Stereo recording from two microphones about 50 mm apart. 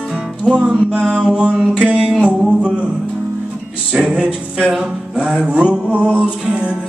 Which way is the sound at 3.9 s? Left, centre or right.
Centre.